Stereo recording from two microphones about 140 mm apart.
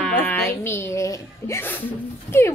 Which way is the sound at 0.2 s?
15° left (ahead or behind).